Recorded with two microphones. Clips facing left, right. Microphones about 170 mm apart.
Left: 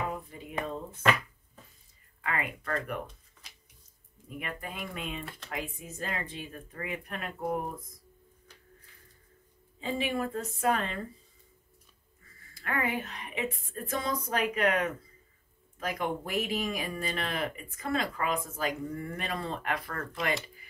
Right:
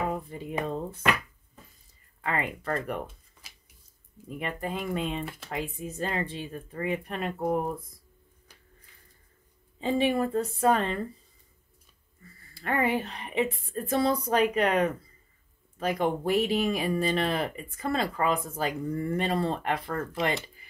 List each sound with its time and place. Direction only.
0.1 s speech: 35° right (ahead or behind)
2.2 s speech: 30° right (ahead or behind)
3.4 s a sound: 5° right (ahead or behind)
4.4 s speech: 30° right (ahead or behind)
7.3 s speech: 40° right (ahead or behind)
9.8 s speech: 30° right (ahead or behind)
12.5 s speech: 30° right (ahead or behind)